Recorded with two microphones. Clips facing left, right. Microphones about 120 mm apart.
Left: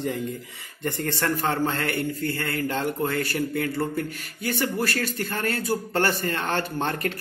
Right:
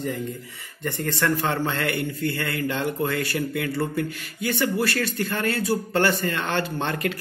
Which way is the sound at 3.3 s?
25° left (ahead or behind).